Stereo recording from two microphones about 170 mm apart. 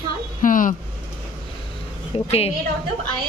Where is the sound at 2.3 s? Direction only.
35° left (ahead or behind).